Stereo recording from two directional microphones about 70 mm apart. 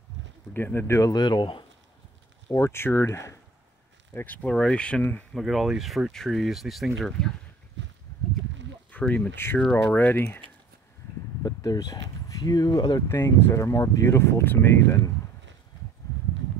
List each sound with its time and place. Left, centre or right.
0.5 s speech: left
1.1 s speech: left
2.5 s speech: left
4.1 s speech: left
5.3 s speech: centre
8.9 s speech: centre
9.3 s speech: left
11.4 s speech: left
13.1 s speech: left
14.1 s speech: left
14.4 s speech: left